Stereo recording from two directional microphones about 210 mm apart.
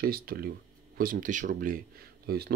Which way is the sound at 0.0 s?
45° right (ahead or behind).